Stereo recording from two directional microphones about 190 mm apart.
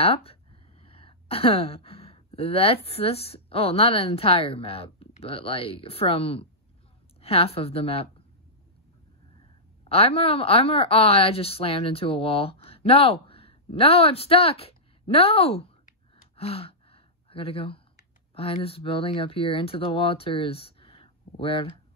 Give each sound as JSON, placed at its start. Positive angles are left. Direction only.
{"t": 0.0, "sound": "a woman's voice", "side_deg": 30}
{"t": 9.8, "sound": "speech", "side_deg": 30}
{"t": 16.3, "sound": "gasp", "side_deg": 30}
{"t": 18.3, "sound": "speech", "side_deg": 30}